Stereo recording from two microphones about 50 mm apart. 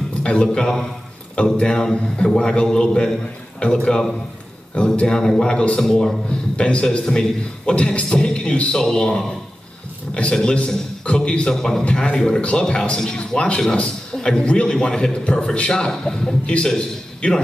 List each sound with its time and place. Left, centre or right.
0.2 s a man's voice: centre
5.0 s a man's voice: centre
6.5 s a man's voice: left